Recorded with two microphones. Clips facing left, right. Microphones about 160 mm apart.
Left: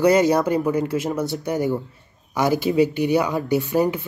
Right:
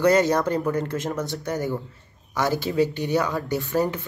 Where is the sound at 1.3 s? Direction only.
15° left (ahead or behind).